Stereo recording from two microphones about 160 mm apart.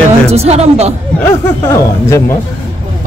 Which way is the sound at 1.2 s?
15° left (ahead or behind).